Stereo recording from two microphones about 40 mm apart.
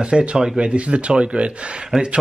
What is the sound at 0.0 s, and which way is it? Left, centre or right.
A man's voice, right.